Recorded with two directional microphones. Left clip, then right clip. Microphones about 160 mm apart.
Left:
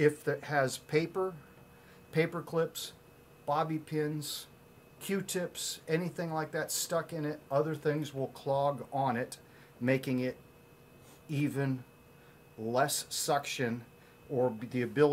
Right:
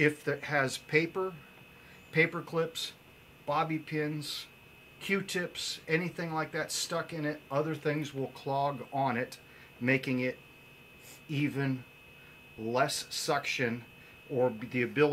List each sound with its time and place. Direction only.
0.0 s speech: 30° left (ahead or behind)
12.7 s speech: 15° left (ahead or behind)